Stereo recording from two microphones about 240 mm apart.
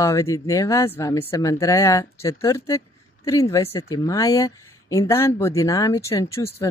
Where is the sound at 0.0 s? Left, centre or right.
Centre.